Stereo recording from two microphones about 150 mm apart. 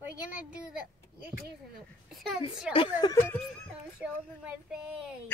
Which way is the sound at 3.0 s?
30° left (ahead or behind).